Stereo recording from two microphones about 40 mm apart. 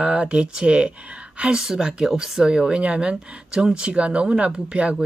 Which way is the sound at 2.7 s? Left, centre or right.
Right.